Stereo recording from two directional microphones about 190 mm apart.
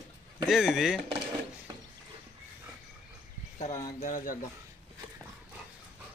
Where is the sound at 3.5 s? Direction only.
40° left (ahead or behind).